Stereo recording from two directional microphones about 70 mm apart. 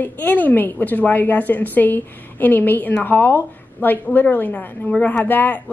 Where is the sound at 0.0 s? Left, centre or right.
Left.